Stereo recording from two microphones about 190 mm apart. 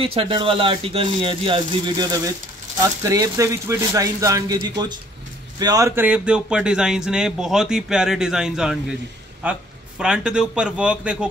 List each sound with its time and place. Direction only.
0.0 s a man's voice: 30° right (ahead or behind); by 11.2 s 5° right (ahead or behind)